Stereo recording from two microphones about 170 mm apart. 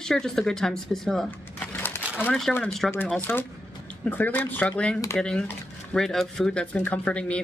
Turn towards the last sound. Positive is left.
turn(degrees=5)  # may be behind; listen again after turning